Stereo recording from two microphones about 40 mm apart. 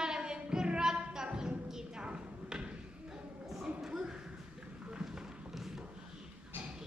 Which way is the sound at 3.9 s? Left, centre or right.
Right.